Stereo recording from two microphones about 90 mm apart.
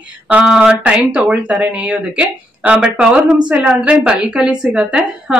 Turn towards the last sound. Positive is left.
turn(degrees=-10)  # may be behind; listen again after turning